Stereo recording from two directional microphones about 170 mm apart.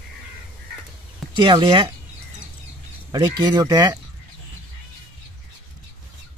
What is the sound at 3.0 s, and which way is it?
Speech, 25° right (ahead or behind).